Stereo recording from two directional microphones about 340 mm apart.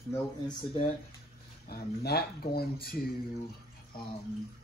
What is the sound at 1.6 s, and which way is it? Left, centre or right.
Speech, left.